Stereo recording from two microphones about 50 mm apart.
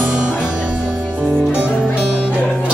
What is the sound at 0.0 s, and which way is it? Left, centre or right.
Music, right.